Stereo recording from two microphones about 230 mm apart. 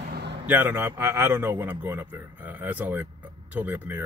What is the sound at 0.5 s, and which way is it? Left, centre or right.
Speech, centre.